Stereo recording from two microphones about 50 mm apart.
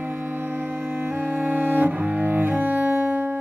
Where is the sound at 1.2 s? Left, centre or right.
Right.